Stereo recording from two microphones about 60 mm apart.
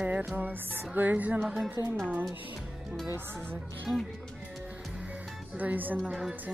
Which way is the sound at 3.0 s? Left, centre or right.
Right.